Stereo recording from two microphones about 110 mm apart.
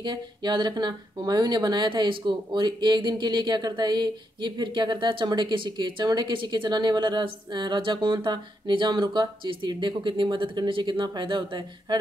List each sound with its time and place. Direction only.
0.0 s speech: 40° right (ahead or behind)